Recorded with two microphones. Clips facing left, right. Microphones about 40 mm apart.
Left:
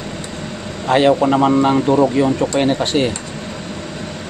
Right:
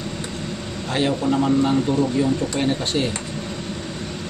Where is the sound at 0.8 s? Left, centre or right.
Left.